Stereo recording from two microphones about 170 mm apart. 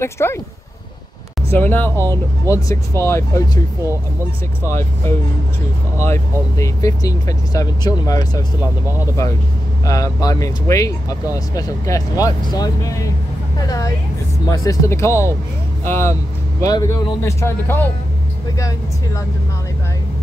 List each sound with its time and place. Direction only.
0.0 s speech: 15° left (ahead or behind)
1.5 s speech: 10° left (ahead or behind)
4.6 s speech: 15° left (ahead or behind)
9.8 s speech: 20° left (ahead or behind)
14.5 s speech: 20° left (ahead or behind)